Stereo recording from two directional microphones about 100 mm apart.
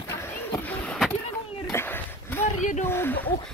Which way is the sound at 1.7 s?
20° left (ahead or behind).